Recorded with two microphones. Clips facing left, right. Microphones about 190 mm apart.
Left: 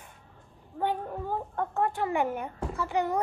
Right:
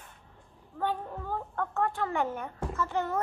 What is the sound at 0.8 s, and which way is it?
A woman's voice, 15° left (ahead or behind).